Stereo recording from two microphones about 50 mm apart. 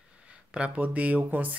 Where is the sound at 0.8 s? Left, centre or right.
Right.